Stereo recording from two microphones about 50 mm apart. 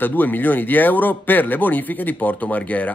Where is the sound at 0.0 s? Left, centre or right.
Left.